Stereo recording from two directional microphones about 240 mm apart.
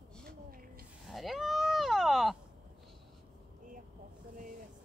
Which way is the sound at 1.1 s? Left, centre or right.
Centre.